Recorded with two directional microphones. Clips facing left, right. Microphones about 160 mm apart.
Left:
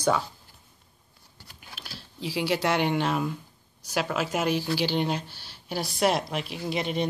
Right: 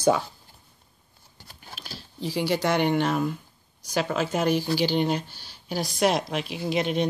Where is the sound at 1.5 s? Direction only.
40° right (ahead or behind).